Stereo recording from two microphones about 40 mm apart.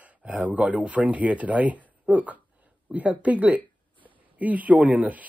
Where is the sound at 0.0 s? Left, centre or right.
Right.